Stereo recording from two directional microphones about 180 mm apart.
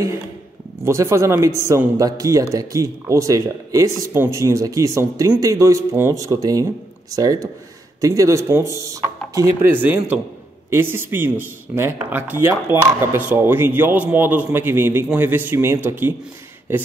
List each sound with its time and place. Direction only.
0.8 s speech: 15° right (ahead or behind)